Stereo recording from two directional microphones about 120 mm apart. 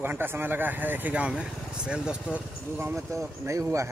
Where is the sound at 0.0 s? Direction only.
20° right (ahead or behind).